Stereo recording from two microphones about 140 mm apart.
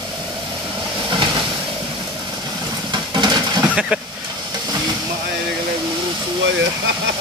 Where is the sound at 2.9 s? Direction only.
30° right (ahead or behind).